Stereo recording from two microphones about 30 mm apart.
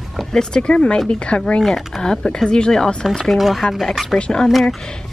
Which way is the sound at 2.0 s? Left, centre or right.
Centre.